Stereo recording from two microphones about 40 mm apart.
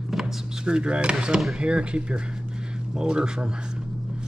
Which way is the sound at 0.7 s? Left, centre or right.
Right.